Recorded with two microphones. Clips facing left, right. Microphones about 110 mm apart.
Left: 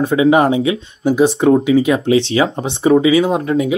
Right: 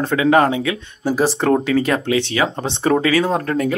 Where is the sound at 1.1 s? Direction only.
Centre (ahead or behind).